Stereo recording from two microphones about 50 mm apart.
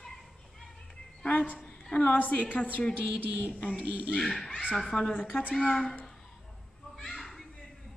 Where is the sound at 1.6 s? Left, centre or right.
Centre.